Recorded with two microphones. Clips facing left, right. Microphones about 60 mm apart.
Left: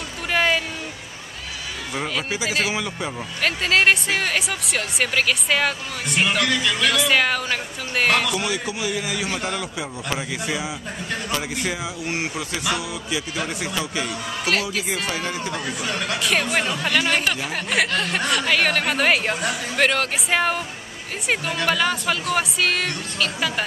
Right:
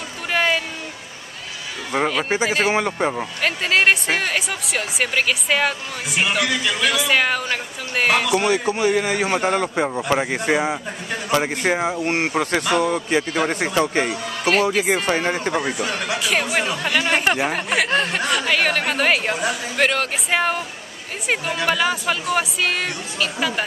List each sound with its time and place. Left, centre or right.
0.3 s a sound: centre
1.9 s speech: right
3.4 s speech: centre
8.4 s speech: right
14.4 s speech: centre
15.0 s speech: right
15.8 s speech: centre
17.1 s speech: right
18.1 s speech: centre